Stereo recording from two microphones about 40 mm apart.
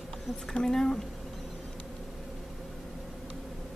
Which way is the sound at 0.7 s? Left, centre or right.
Centre.